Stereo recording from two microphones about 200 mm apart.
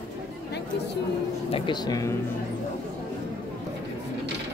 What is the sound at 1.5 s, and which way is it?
Speech, 20° left (ahead or behind).